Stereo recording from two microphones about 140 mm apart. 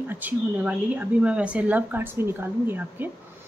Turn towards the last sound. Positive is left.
turn(degrees=-15)  # may be behind; listen again after turning